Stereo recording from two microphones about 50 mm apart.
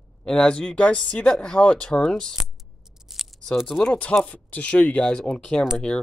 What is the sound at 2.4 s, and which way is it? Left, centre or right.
Keys jangling, centre.